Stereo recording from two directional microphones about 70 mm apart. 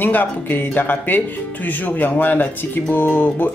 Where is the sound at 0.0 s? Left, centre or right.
Left.